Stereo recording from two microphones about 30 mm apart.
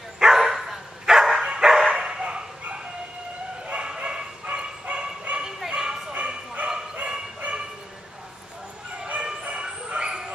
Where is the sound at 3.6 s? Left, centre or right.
Right.